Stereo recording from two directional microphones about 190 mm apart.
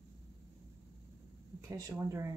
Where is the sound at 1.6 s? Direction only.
15° right (ahead or behind).